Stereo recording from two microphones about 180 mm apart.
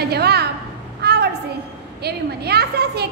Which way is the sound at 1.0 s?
65° right (ahead or behind).